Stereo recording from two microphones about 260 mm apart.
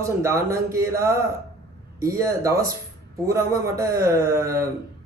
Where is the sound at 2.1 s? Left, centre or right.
Centre.